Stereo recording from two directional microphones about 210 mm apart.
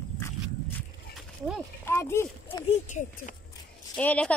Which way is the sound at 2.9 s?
35° left (ahead or behind).